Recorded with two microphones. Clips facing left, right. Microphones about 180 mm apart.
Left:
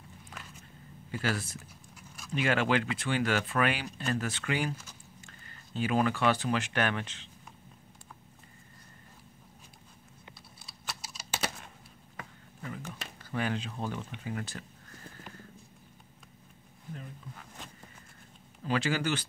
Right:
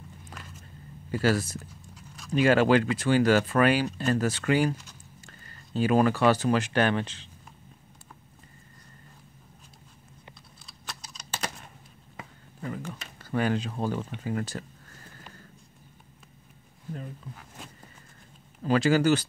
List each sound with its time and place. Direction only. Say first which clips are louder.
1.1 s speech: right 8 dB; 40° right (ahead or behind)
10.7 s computer keyboard: even; 5° left (ahead or behind)
12.6 s speech: right 5 dB; 40° right (ahead or behind)
18.6 s speech: right 8 dB; 40° right (ahead or behind)